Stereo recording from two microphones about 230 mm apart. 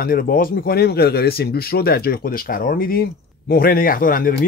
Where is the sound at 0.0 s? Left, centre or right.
Left.